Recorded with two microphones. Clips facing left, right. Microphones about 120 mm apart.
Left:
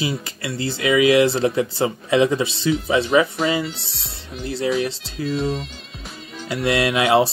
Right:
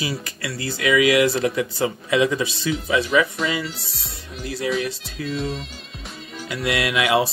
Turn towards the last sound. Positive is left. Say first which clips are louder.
# left 3 dB
turn(degrees=30)  # may be behind; listen again after turning